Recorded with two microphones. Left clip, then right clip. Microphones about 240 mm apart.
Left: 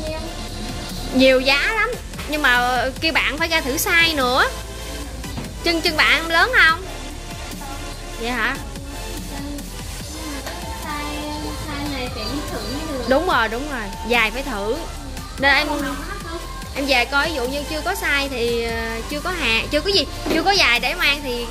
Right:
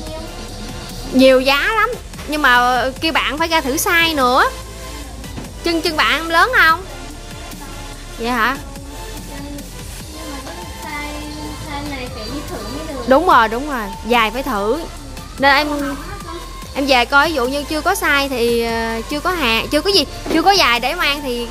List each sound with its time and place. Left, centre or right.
1.1 s a child's voice: right
5.6 s speech: centre
8.2 s speech: right
13.1 s speech: right
16.7 s speech: right